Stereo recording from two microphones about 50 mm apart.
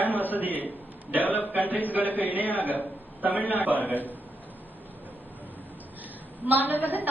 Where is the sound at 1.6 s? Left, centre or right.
Right.